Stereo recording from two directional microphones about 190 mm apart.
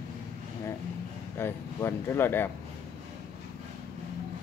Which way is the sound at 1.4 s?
10° left (ahead or behind).